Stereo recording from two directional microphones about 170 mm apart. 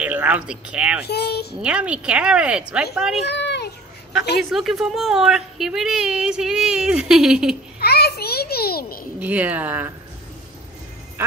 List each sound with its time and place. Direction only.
0.0 s speech: 10° right (ahead or behind)
1.0 s a child's voice: 70° left (ahead or behind)
1.6 s a woman's voice: 5° right (ahead or behind)
3.3 s a sound: 85° left
4.4 s a woman's voice: centre (ahead or behind)
7.8 s a sound: 70° left (ahead or behind)
9.2 s speech: 10° right (ahead or behind)